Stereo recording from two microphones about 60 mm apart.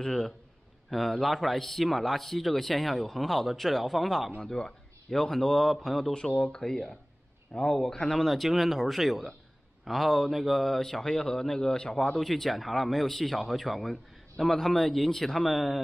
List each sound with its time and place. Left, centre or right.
0.0 s speech: centre
4.4 s a man's voice: centre
6.1 s speech: centre